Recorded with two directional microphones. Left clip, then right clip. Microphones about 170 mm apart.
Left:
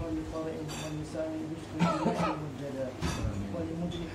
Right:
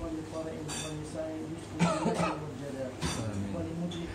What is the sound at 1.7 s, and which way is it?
Speech, 20° right (ahead or behind).